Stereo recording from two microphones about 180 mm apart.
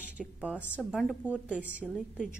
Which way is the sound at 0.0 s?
5° right (ahead or behind).